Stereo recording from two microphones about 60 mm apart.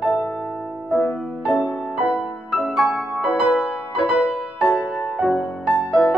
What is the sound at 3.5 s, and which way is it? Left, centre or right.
Music, centre.